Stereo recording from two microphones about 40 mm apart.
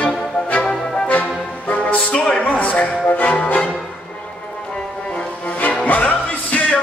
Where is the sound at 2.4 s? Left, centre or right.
Left.